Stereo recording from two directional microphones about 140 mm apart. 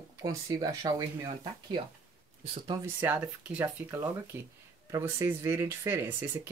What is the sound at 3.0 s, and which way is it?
Speech, 10° right (ahead or behind).